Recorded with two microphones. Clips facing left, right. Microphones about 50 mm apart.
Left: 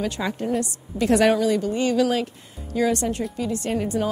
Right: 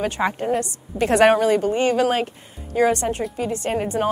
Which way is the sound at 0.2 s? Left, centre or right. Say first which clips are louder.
Right 5 dB; right.